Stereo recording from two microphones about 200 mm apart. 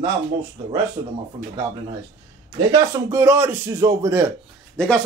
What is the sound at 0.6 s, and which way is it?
Speech, 25° right (ahead or behind).